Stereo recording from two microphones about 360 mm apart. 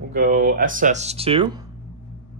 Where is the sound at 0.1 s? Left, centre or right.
Right.